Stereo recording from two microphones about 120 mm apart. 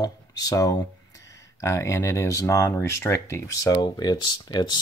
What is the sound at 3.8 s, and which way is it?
Speech, 35° left (ahead or behind).